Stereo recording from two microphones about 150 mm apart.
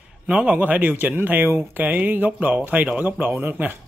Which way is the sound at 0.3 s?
10° right (ahead or behind).